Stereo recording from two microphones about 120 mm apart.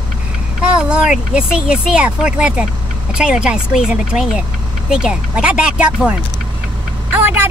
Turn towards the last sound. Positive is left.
turn(degrees=-15)  # may be behind; listen again after turning